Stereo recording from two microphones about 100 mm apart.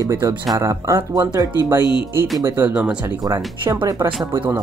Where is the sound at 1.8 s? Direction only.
55° left (ahead or behind).